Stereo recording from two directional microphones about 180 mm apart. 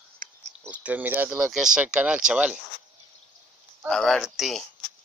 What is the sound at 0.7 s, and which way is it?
Speech, 10° right (ahead or behind).